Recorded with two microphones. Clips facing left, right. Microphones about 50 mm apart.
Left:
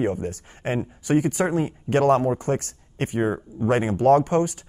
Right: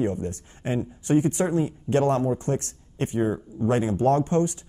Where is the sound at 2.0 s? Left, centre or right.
Left.